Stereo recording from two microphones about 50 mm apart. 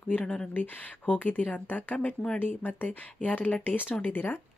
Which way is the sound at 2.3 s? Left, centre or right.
Left.